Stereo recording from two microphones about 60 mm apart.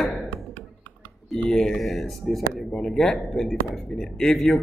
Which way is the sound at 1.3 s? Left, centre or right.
Centre.